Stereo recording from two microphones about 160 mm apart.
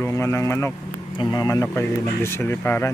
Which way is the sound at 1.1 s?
25° left (ahead or behind).